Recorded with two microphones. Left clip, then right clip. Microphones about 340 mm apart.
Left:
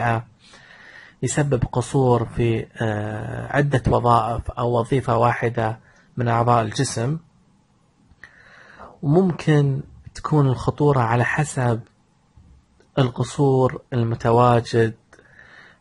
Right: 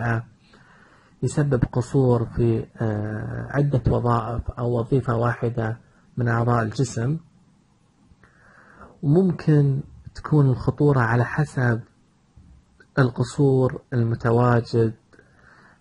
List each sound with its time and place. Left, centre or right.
1.2 s speech: left
3.7 s speech: left
6.3 s speech: centre
9.0 s speech: left
9.3 s speech: centre
9.7 s a sound: left
10.4 s speech: centre
12.9 s speech: left
14.0 s speech: left